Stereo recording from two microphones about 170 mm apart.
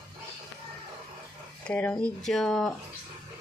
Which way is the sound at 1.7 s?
10° left (ahead or behind).